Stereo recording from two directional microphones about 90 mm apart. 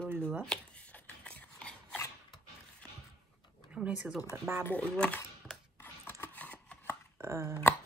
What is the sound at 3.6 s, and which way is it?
Speech, 10° right (ahead or behind).